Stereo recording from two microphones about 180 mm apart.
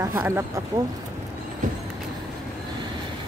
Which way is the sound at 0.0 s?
15° right (ahead or behind).